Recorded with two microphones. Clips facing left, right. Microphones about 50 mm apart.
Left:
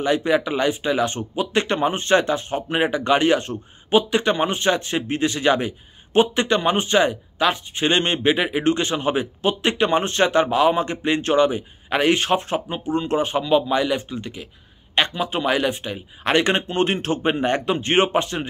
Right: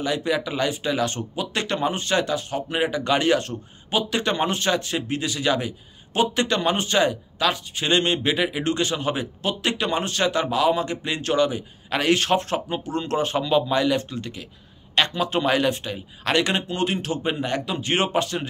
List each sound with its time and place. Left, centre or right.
0.0 s a man's voice: left